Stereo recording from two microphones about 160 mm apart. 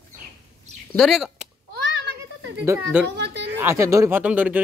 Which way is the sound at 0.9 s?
Centre (ahead or behind).